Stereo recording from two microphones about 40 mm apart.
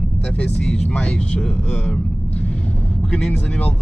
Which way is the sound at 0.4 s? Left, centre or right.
Left.